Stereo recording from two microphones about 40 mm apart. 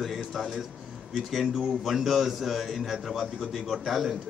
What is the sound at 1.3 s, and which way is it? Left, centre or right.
A man's voice, centre.